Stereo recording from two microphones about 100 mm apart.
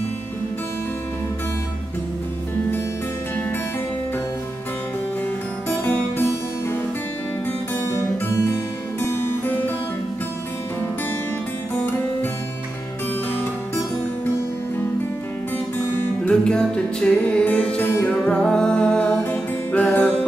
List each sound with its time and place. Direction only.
5.7 s music: 20° left (ahead or behind)
9.0 s music: 20° left (ahead or behind)
11.7 s music: 20° left (ahead or behind)
16.3 s music: 10° left (ahead or behind)